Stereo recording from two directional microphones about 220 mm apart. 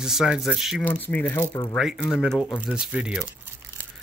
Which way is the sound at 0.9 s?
10° left (ahead or behind).